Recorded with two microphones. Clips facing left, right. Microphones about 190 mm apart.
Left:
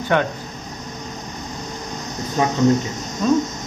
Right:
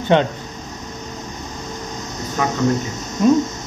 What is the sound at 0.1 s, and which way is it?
Speech, 25° right (ahead or behind).